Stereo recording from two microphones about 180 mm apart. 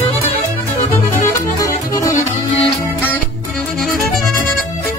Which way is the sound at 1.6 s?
20° left (ahead or behind).